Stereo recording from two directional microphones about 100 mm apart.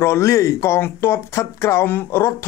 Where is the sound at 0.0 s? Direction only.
30° left (ahead or behind).